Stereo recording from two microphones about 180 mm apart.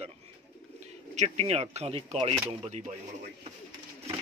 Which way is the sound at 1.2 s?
35° right (ahead or behind).